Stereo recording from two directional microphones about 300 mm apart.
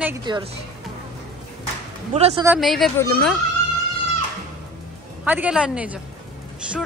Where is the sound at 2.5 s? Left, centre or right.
Centre.